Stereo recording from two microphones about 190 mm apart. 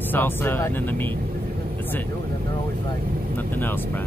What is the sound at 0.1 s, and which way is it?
Speech, 10° left (ahead or behind).